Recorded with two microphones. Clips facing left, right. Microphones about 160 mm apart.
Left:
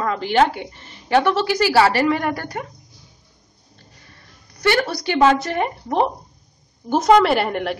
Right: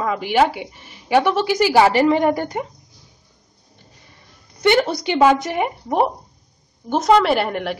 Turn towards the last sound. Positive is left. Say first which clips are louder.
# even
turn(degrees=0)  # may be behind; listen again after turning